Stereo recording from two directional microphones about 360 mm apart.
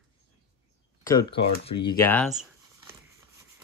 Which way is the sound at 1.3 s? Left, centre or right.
Centre.